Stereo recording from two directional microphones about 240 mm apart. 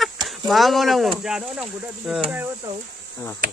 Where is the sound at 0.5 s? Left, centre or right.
Centre.